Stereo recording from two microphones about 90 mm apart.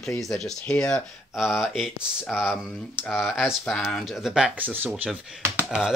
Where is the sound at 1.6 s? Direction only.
5° right (ahead or behind).